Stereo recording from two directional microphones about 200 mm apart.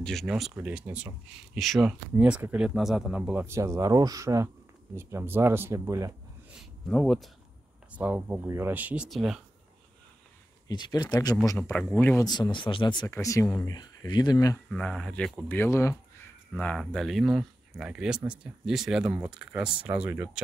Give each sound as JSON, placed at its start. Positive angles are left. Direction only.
{"t": 0.0, "sound": "speech", "side_deg": 0}
{"t": 6.6, "sound": "speech", "side_deg": 0}
{"t": 7.9, "sound": "speech", "side_deg": -10}
{"t": 10.7, "sound": "speech", "side_deg": 20}
{"t": 12.3, "sound": "speech", "side_deg": 20}
{"t": 14.7, "sound": "speech", "side_deg": 5}